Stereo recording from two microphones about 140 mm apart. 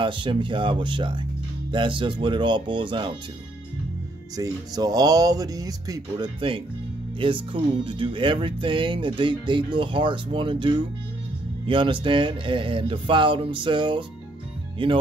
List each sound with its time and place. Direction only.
0.0 s speech: 35° right (ahead or behind)
4.4 s speech: 25° right (ahead or behind)